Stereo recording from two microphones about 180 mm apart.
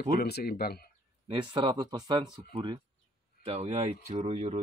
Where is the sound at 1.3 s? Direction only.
25° right (ahead or behind).